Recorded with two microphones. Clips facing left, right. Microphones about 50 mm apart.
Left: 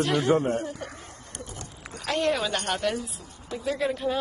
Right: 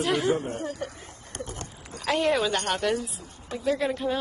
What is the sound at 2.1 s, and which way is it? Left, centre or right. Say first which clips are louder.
Speech: right 2 dB; centre.